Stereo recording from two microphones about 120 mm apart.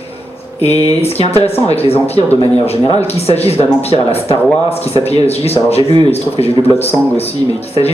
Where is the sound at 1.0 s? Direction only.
55° left (ahead or behind).